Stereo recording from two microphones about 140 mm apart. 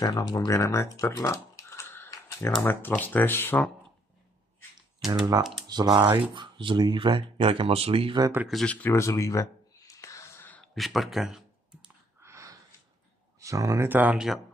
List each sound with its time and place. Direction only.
0.0 s speech: 30° left (ahead or behind)
2.0 s typing: 20° left (ahead or behind)
2.6 s speech: 15° left (ahead or behind)
5.5 s speech: 30° right (ahead or behind)
8.2 s speech: 15° right (ahead or behind)
8.5 s speech: centre (ahead or behind)
8.7 s a sound: 15° left (ahead or behind); by 11.4 s centre (ahead or behind)
12.2 s a sound: 20° right (ahead or behind)
13.4 s speech: 25° right (ahead or behind); by 14.4 s 5° right (ahead or behind)